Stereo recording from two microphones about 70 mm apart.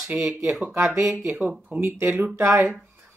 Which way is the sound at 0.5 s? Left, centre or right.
Centre.